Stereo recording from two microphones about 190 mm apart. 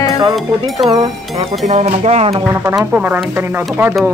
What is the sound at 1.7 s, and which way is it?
Music, 35° right (ahead or behind).